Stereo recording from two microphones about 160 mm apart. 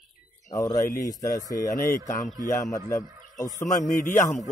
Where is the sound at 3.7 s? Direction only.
55° left (ahead or behind).